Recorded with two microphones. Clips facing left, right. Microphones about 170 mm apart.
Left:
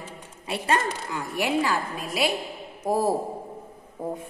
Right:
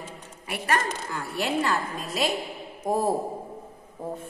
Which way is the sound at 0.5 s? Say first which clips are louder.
Left 2 dB; 25° left (ahead or behind).